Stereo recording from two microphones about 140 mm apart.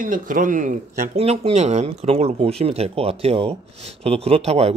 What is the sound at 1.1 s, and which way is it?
Speech, 45° right (ahead or behind).